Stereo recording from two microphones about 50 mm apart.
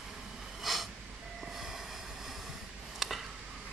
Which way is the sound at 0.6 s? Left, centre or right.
Centre.